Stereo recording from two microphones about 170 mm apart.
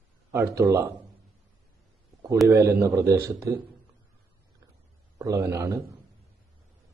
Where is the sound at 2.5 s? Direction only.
20° right (ahead or behind).